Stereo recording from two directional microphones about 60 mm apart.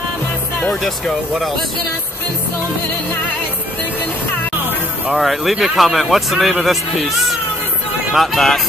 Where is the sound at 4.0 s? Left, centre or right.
Left.